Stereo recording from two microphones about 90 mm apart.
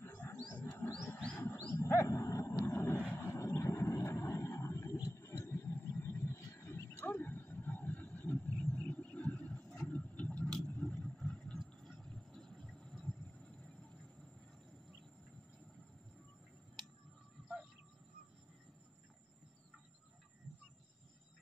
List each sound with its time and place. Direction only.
0.0 s wild animals: 20° left (ahead or behind)
1.7 s wild animals: 35° left (ahead or behind)
3.2 s vehicle: 35° left (ahead or behind)
7.0 s wild animals: 20° left (ahead or behind)
9.8 s vehicle: 15° left (ahead or behind)